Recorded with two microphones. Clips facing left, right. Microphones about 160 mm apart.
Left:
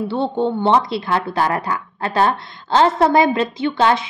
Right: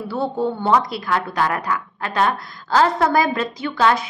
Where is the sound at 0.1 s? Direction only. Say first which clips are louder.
Even; 25° left (ahead or behind).